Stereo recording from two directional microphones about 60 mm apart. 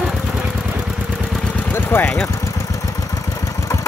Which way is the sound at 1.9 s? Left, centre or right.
Left.